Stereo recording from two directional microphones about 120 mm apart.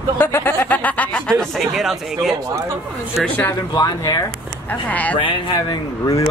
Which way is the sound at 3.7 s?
35° left (ahead or behind).